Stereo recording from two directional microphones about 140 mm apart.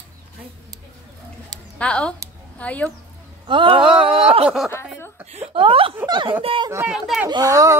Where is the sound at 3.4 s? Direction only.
35° right (ahead or behind).